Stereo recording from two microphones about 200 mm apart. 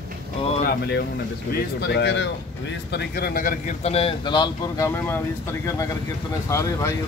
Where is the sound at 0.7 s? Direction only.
55° left (ahead or behind).